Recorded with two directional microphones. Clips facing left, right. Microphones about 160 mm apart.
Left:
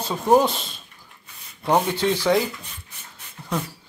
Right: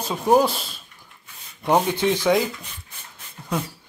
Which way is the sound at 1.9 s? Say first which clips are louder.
Right 1 dB; 15° right (ahead or behind).